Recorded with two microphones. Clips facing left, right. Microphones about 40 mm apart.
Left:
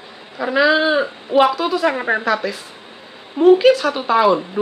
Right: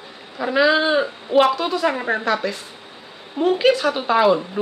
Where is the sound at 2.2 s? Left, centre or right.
Centre.